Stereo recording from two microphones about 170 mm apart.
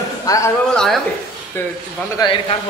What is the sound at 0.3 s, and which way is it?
Speech, 20° left (ahead or behind).